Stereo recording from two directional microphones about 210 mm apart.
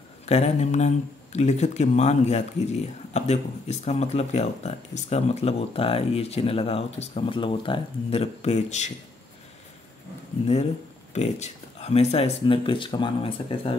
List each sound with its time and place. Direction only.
0.3 s speech: 30° left (ahead or behind)
10.4 s speech: 30° left (ahead or behind)